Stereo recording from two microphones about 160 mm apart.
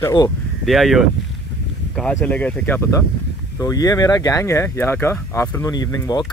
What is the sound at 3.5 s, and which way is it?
Speech, 20° left (ahead or behind).